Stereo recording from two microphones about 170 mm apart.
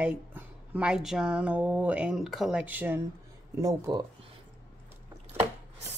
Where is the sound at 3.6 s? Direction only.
25° right (ahead or behind).